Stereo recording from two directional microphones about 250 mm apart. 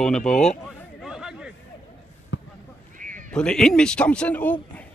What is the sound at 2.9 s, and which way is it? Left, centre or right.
Bleat, right.